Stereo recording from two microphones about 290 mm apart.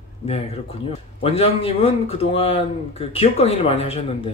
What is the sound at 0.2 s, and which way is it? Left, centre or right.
A man's voice, centre.